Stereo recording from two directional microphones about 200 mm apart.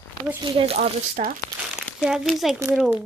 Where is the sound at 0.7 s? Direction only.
40° right (ahead or behind).